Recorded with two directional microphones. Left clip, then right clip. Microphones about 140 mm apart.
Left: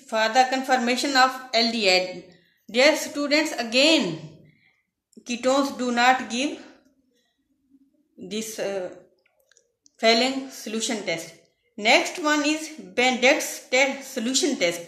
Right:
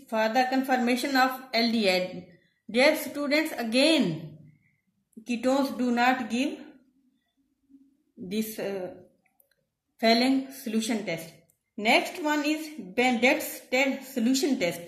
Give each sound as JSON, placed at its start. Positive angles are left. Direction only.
{"t": 0.0, "sound": "a woman's voice", "side_deg": -30}
{"t": 5.2, "sound": "a woman's voice", "side_deg": -35}
{"t": 8.3, "sound": "a woman's voice", "side_deg": -35}
{"t": 9.9, "sound": "a woman's voice", "side_deg": -35}